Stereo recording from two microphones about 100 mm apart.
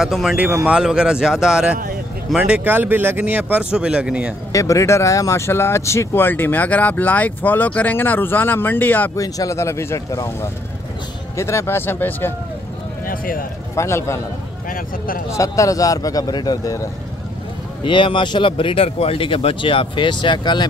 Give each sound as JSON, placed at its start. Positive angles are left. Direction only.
{"t": 0.0, "sound": "speech", "side_deg": -5}
{"t": 4.5, "sound": "speech", "side_deg": 35}
{"t": 9.1, "sound": "a man's voice", "side_deg": 35}
{"t": 13.7, "sound": "speech", "side_deg": 30}
{"t": 15.3, "sound": "a man's voice", "side_deg": 30}
{"t": 17.8, "sound": "speech", "side_deg": 55}